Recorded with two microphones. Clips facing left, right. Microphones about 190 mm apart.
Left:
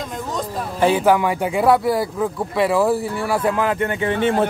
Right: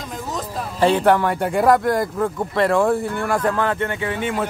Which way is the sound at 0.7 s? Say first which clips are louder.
Even; 5° left (ahead or behind).